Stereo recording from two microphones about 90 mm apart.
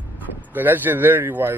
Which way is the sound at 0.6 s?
20° right (ahead or behind).